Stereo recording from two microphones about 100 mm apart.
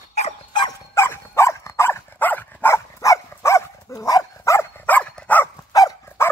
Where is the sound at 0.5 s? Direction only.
50° left (ahead or behind).